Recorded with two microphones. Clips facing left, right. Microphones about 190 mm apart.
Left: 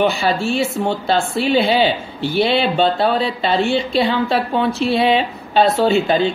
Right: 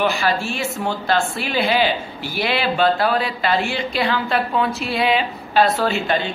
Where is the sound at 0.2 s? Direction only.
30° left (ahead or behind).